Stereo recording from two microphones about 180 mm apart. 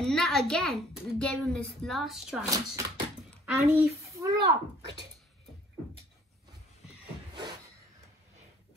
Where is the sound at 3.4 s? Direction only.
15° right (ahead or behind).